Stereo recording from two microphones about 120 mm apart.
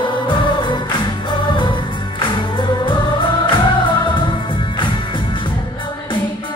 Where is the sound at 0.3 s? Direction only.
40° left (ahead or behind).